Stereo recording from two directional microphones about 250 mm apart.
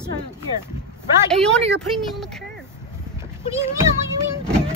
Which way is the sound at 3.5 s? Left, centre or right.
Centre.